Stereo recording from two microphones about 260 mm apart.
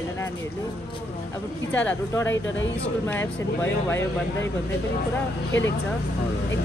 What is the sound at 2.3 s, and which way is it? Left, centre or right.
Speech, left.